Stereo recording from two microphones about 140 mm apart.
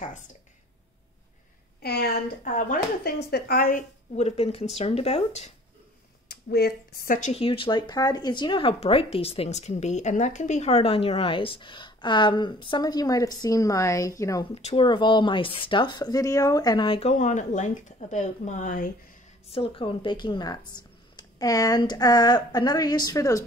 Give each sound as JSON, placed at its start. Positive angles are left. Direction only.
{"t": 2.4, "sound": "speech", "side_deg": 70}
{"t": 4.1, "sound": "speech", "side_deg": 50}
{"t": 7.0, "sound": "speech", "side_deg": 75}
{"t": 7.3, "sound": "speech", "side_deg": 40}
{"t": 14.4, "sound": "speech", "side_deg": 45}
{"t": 17.1, "sound": "speech", "side_deg": 60}
{"t": 19.5, "sound": "speech", "side_deg": 40}